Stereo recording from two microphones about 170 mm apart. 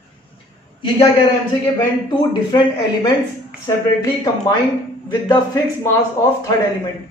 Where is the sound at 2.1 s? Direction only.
25° left (ahead or behind).